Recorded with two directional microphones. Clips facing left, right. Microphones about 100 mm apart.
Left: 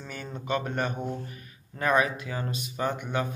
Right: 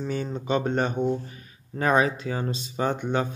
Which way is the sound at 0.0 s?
25° right (ahead or behind).